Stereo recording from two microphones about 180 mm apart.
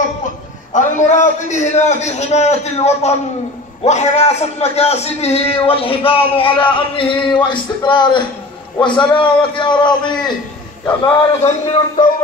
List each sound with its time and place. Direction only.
0.7 s a man's voice: 40° left (ahead or behind); by 10.3 s 25° left (ahead or behind)
11.4 s a man's voice: 40° left (ahead or behind)